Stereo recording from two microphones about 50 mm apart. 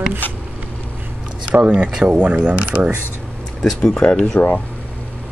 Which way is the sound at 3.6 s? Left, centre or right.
Centre.